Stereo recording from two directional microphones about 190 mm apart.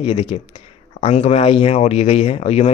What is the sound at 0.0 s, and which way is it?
Speech, 30° left (ahead or behind).